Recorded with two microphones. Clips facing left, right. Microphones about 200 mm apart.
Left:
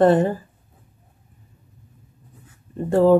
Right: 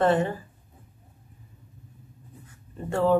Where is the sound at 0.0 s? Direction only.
35° left (ahead or behind).